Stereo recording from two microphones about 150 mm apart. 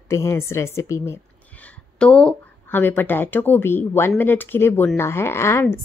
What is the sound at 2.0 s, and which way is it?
A woman's voice, 5° left (ahead or behind).